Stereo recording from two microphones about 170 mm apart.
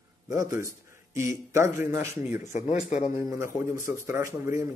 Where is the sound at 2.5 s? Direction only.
45° left (ahead or behind).